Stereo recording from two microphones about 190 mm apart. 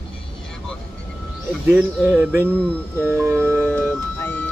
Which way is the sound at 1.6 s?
5° right (ahead or behind).